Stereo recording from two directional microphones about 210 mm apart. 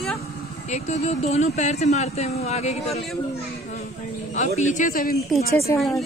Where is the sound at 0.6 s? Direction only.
35° left (ahead or behind).